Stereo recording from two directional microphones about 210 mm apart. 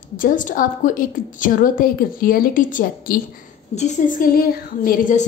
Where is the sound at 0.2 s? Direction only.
40° left (ahead or behind).